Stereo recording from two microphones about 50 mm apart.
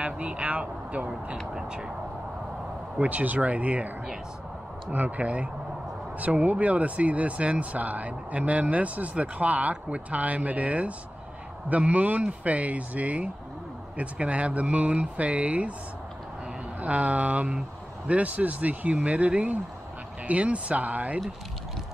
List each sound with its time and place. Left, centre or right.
0.0 s speech: right
1.5 s speech: centre
3.0 s speech: right
4.9 s speech: right
16.8 s speech: right